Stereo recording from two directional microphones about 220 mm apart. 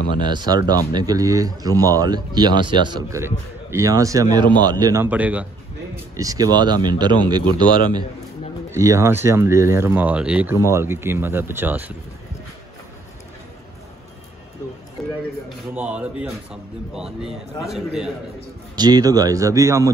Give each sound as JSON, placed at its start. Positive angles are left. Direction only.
{"t": 0.3, "sound": "speech", "side_deg": -20}
{"t": 15.0, "sound": "a sound", "side_deg": 0}
{"t": 15.7, "sound": "a man's voice", "side_deg": -5}
{"t": 18.8, "sound": "speech", "side_deg": -15}